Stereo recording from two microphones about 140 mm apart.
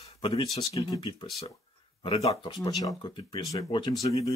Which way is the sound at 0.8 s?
30° left (ahead or behind).